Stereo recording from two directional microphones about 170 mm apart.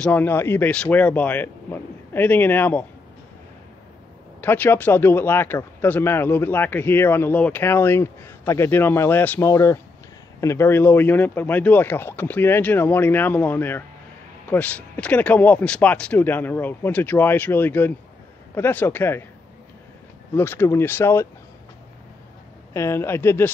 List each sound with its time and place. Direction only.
0.0 s a man's voice: 10° left (ahead or behind)
4.4 s a man's voice: 10° left (ahead or behind)
20.3 s a man's voice: 15° left (ahead or behind)
22.7 s a man's voice: 15° left (ahead or behind)